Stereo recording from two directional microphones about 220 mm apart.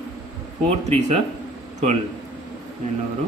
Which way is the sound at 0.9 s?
30° right (ahead or behind).